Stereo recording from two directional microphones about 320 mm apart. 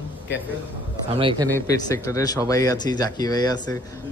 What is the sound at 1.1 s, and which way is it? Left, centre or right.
Speech, centre.